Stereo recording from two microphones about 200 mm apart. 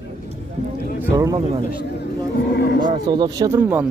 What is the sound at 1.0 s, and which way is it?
Speech, 15° right (ahead or behind).